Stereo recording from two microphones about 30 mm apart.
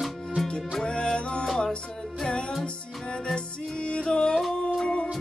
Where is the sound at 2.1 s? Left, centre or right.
Left.